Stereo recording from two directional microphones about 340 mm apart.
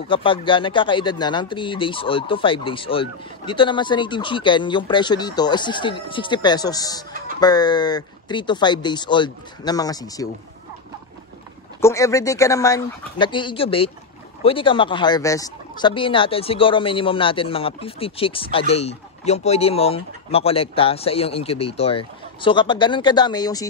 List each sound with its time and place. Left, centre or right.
0.1 s speech: centre
7.1 s music: right
7.3 s speech: centre
11.8 s speech: centre